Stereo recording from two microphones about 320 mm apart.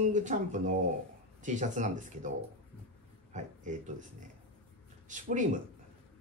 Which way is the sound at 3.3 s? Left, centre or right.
Right.